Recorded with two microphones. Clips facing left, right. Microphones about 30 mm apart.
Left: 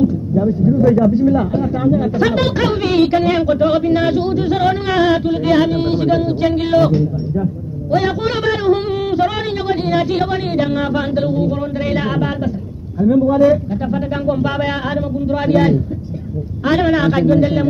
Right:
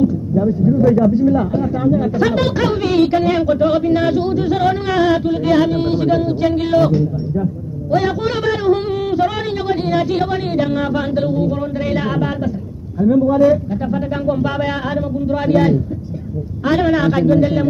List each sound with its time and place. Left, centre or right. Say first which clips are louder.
0.8 s speech: left 1 dB; left